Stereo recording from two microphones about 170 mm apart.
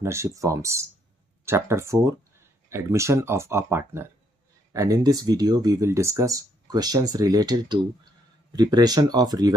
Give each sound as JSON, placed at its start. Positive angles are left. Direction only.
{"t": 0.0, "sound": "speech", "side_deg": -15}